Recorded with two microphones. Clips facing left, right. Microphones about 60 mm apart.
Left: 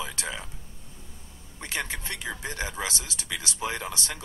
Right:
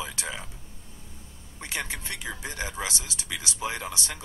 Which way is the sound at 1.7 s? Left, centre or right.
Left.